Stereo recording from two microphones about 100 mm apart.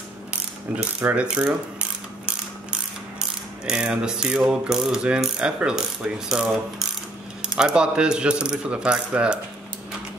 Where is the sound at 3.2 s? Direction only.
10° right (ahead or behind).